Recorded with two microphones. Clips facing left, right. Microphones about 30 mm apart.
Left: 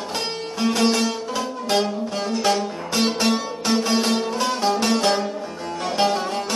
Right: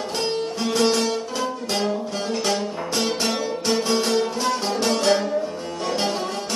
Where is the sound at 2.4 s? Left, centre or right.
Left.